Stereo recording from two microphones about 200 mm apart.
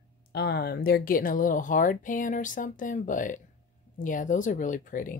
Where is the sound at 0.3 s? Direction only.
55° left (ahead or behind).